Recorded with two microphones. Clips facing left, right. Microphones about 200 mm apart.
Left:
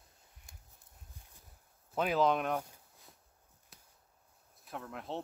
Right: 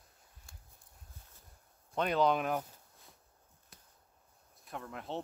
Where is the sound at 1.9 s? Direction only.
5° left (ahead or behind).